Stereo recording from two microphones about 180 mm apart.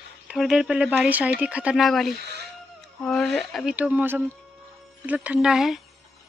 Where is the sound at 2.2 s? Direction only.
70° right (ahead or behind).